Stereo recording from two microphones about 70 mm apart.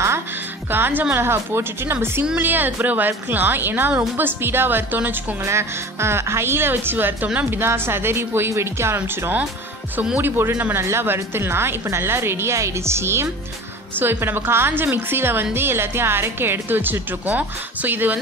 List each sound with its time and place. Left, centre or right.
0.7 s a woman's voice: right
5.5 s speech: right